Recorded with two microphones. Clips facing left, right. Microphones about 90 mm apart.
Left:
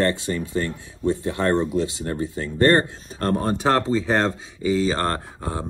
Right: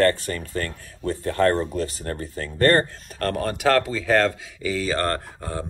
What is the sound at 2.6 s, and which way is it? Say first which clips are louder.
Speech: left 1 dB; 30° left (ahead or behind).